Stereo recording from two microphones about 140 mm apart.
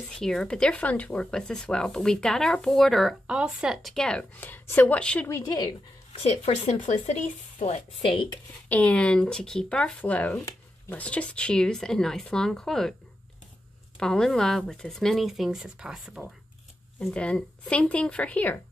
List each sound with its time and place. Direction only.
0.2 s speech: 5° left (ahead or behind)
5.3 s speech: 30° left (ahead or behind)
6.4 s speech: 50° left (ahead or behind)
7.5 s speech: 45° left (ahead or behind)
8.6 s speech: 10° left (ahead or behind)
13.9 s speech: 5° left (ahead or behind)